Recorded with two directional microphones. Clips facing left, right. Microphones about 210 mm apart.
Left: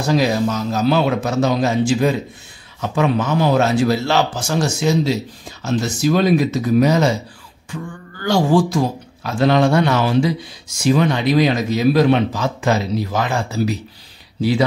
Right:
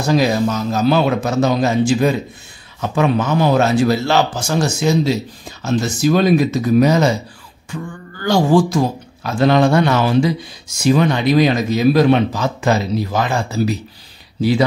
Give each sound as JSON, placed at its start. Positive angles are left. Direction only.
{"t": 0.0, "sound": "speech", "side_deg": -45}